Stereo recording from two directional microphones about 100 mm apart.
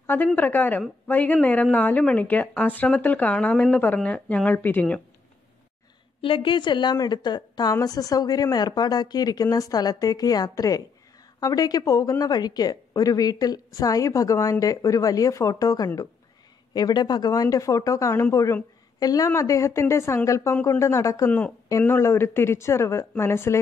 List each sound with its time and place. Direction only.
0.0 s a woman's voice: 20° left (ahead or behind)
6.2 s a woman's voice: 60° left (ahead or behind); by 21.3 s 30° left (ahead or behind)
21.3 s a woman's voice: 15° left (ahead or behind)
21.8 s speech: 25° left (ahead or behind)